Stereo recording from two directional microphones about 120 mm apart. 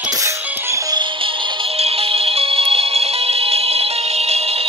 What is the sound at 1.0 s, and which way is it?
Music, 45° right (ahead or behind).